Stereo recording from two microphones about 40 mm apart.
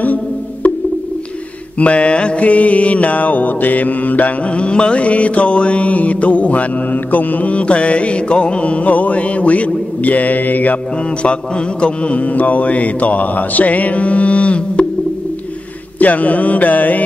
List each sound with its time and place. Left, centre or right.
0.0 s music: left
1.8 s mantra: left
4.5 s mantra: left
11.2 s mantra: left
16.0 s mantra: left